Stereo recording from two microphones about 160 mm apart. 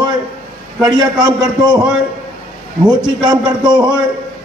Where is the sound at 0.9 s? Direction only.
25° right (ahead or behind).